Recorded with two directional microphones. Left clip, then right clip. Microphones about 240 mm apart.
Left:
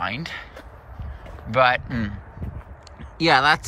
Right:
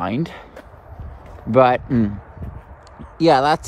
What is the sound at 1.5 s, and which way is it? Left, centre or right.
Speech, right.